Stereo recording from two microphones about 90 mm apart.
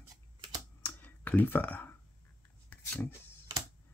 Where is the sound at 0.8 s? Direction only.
20° left (ahead or behind).